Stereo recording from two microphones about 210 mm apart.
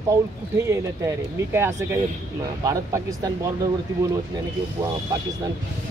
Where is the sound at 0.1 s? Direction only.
15° right (ahead or behind).